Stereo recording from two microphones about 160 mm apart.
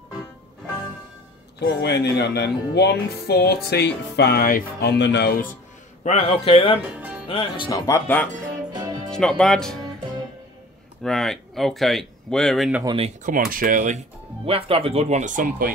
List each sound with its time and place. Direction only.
1.6 s speech: 90° left
6.0 s a man's voice: 40° left (ahead or behind)
7.0 s music: 10° right (ahead or behind)
7.2 s a man's voice: 35° left (ahead or behind)
9.1 s speech: 5° left (ahead or behind)
11.0 s speech: centre (ahead or behind)
12.8 s speech: 35° right (ahead or behind)
13.2 s speech: 60° right (ahead or behind)